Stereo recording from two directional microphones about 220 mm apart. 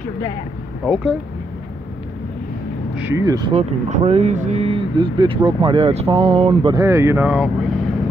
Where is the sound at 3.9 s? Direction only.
30° right (ahead or behind); by 7.5 s 5° right (ahead or behind).